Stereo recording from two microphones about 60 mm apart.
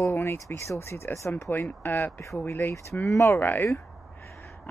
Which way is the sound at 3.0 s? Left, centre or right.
Left.